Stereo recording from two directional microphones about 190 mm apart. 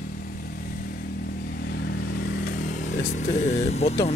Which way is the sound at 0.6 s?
50° left (ahead or behind).